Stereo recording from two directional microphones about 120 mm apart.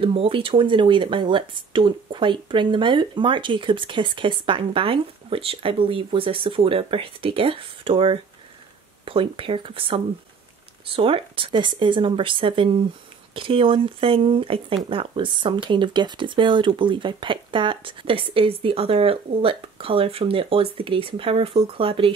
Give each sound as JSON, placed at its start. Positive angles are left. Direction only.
{"t": 0.0, "sound": "speech", "side_deg": -50}